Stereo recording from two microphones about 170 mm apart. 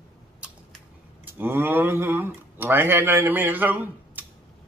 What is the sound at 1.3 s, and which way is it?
Speech, 10° right (ahead or behind).